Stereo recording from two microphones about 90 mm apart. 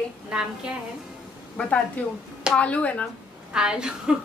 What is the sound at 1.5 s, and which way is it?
Speech, 10° left (ahead or behind).